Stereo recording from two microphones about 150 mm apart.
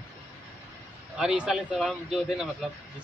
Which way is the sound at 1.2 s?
5° right (ahead or behind).